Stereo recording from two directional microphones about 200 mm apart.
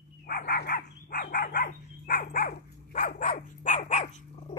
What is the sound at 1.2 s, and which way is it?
Dog, 40° left (ahead or behind).